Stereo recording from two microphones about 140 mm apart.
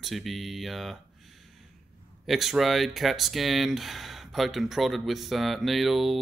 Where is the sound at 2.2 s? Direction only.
Centre (ahead or behind).